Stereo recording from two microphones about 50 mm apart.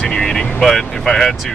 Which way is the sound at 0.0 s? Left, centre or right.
Centre.